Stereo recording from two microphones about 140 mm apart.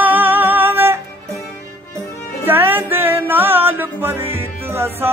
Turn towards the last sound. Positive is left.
turn(degrees=-15)  # may be behind; listen again after turning